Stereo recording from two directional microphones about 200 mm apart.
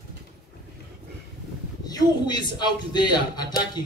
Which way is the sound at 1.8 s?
20° left (ahead or behind).